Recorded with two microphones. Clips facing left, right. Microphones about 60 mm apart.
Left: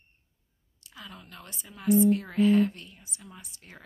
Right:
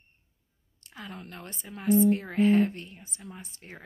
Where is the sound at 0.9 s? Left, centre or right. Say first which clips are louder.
Right 4 dB; right.